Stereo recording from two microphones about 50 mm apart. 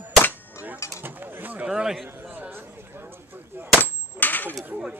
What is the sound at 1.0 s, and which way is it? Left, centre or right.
Speech, right.